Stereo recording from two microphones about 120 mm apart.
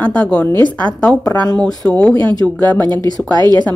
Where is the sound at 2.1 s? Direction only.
40° right (ahead or behind).